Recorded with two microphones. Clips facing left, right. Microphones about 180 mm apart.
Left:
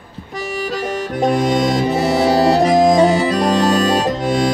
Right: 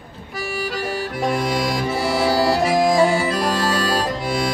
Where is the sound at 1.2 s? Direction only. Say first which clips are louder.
Left 6 dB; 40° left (ahead or behind).